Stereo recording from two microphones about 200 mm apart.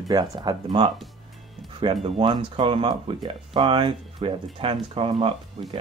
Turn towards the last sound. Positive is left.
turn(degrees=-25)  # may be behind; listen again after turning